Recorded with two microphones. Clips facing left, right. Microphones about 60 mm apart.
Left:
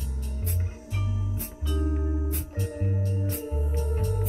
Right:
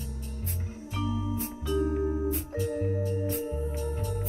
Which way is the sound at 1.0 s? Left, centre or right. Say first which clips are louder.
Right 6 dB; right.